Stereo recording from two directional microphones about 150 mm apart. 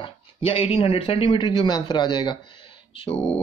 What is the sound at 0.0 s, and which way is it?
Speech, 35° left (ahead or behind).